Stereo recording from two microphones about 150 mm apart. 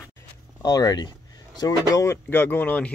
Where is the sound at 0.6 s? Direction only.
25° left (ahead or behind).